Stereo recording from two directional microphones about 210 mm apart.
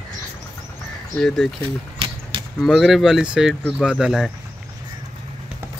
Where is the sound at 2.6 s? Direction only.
Centre (ahead or behind).